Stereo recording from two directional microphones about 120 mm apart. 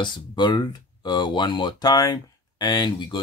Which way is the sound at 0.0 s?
40° left (ahead or behind).